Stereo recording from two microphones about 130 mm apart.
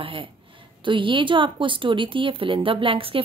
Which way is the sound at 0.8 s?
40° right (ahead or behind).